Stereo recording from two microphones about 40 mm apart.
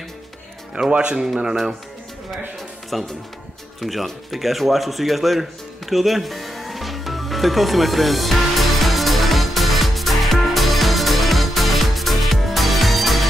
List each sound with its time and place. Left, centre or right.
0.7 s speech: right
1.2 s speech: centre
2.9 s speech: centre
3.8 s music: centre